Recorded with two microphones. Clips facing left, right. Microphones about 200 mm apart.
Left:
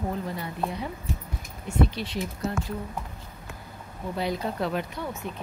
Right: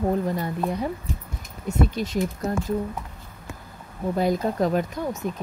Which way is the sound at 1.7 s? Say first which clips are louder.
Right 2 dB; 45° right (ahead or behind).